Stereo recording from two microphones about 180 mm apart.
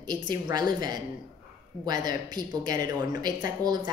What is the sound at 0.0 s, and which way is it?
Speech, 25° right (ahead or behind).